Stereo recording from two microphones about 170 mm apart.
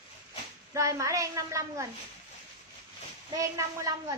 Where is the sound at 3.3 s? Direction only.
20° right (ahead or behind).